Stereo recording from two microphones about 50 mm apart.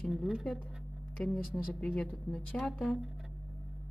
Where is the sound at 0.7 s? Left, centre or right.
Centre.